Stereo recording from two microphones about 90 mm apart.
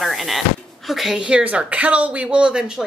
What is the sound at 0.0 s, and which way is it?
A woman's voice, centre (ahead or behind).